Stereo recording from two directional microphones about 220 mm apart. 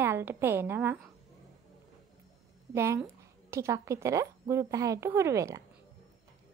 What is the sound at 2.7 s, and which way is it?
A woman's voice, 10° right (ahead or behind).